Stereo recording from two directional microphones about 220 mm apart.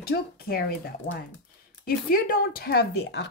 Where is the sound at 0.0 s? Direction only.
45° left (ahead or behind).